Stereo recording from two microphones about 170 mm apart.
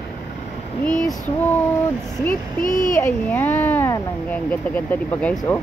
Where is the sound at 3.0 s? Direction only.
10° left (ahead or behind).